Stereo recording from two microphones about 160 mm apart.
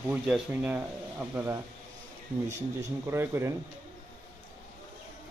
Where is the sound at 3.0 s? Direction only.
15° right (ahead or behind).